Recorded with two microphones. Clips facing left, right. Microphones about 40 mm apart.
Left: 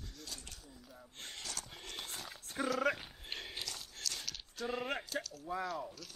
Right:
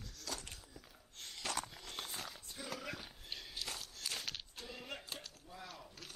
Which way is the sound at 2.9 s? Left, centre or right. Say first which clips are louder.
Left 9 dB; left.